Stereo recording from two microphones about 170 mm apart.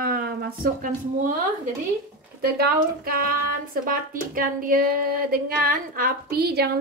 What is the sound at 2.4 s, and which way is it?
Speech, 65° right (ahead or behind).